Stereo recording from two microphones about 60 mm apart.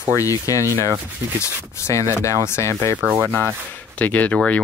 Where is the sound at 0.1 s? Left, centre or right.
Left.